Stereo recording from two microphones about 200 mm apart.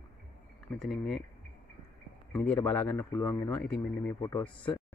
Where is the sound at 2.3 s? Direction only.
10° left (ahead or behind).